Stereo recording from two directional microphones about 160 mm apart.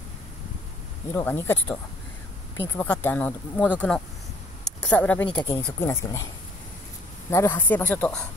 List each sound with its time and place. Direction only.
1.1 s speech: 15° left (ahead or behind)
7.2 s speech: 15° left (ahead or behind)